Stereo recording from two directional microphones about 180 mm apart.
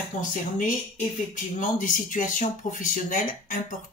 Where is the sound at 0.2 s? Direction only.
45° left (ahead or behind).